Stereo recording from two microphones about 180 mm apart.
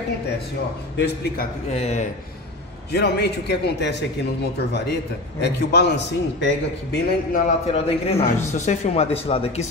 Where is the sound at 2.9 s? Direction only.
65° left (ahead or behind).